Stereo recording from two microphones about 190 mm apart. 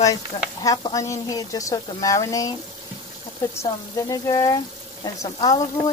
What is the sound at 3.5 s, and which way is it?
Stir, 15° left (ahead or behind).